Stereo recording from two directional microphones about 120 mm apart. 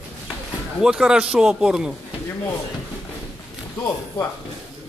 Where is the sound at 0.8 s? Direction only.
5° right (ahead or behind).